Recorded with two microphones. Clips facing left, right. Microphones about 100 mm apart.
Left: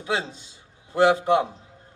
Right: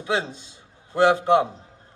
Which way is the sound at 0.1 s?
20° right (ahead or behind).